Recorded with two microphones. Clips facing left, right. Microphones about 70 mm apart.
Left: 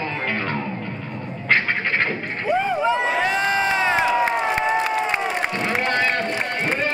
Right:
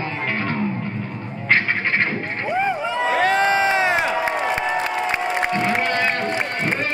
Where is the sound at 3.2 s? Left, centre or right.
Right.